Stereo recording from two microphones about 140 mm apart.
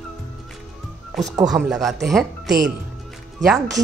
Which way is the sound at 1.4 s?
5° right (ahead or behind).